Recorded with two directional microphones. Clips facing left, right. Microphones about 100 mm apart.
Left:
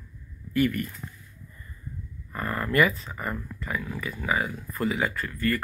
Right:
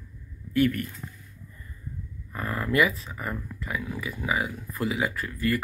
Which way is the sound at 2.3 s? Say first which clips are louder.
Left 1 dB; 5° right (ahead or behind).